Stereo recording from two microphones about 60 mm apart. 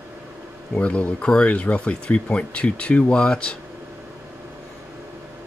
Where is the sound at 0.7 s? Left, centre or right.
Left.